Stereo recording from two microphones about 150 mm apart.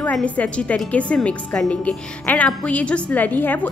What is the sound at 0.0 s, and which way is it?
A woman's voice, 10° left (ahead or behind).